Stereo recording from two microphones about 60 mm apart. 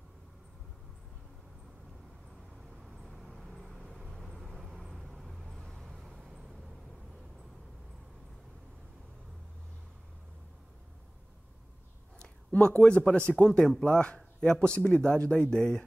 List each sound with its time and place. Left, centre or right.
2.8 s vehicle: centre
4.0 s vehicle: centre
12.2 s a sound: centre
12.8 s speech: centre